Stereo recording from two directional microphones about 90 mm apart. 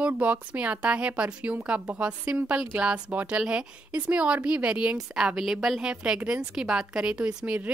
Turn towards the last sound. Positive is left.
turn(degrees=-15)  # may be behind; listen again after turning